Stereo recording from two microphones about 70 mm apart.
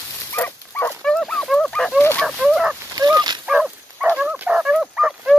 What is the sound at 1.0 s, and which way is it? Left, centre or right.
Dog, centre.